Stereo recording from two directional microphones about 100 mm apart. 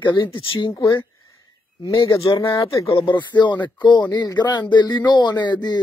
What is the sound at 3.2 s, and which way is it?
Speech, 50° left (ahead or behind).